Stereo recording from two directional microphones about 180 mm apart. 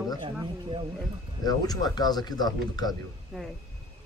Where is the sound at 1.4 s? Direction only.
20° left (ahead or behind).